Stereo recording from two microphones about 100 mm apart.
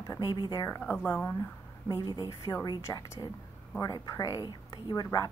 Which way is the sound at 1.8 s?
45° left (ahead or behind).